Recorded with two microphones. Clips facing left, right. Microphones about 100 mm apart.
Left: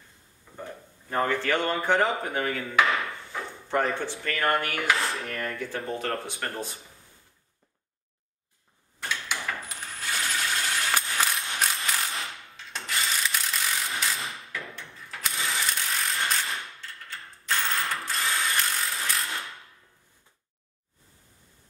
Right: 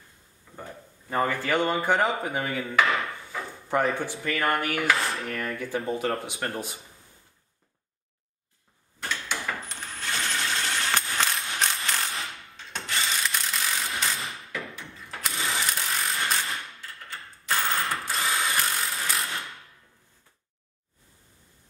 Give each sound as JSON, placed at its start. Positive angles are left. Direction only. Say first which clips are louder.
{"t": 0.6, "sound": "speech", "louder": "left 1 dB", "side_deg": -5}
{"t": 1.9, "sound": "a sound", "louder": "even", "side_deg": -5}
{"t": 4.4, "sound": "speech", "louder": "even", "side_deg": -15}
{"t": 4.8, "sound": "dishes", "louder": "right 1 dB", "side_deg": 0}
{"t": 5.5, "sound": "speech", "louder": "right 3 dB", "side_deg": -10}
{"t": 9.1, "sound": "coin", "louder": "right 1 dB", "side_deg": 5}
{"t": 15.2, "sound": "ratchet", "louder": "right 1 dB", "side_deg": 0}
{"t": 17.7, "sound": "mechanisms", "louder": "right 1 dB", "side_deg": -30}
{"t": 18.0, "sound": "ratchet", "louder": "right 1 dB", "side_deg": 0}